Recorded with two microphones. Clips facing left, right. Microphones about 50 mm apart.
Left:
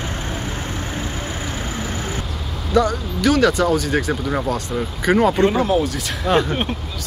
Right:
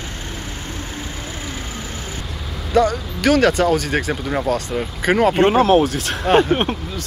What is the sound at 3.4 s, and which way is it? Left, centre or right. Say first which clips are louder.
Speech: right 1 dB; right.